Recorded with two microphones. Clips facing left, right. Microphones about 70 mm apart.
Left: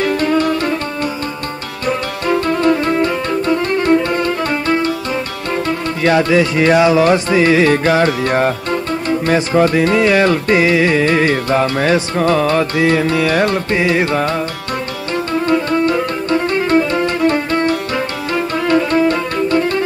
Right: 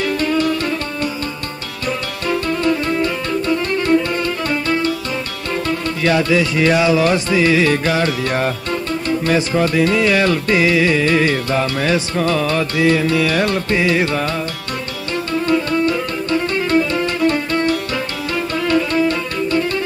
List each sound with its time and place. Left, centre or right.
0.0 s music: left
1.9 s music: left
15.3 s music: left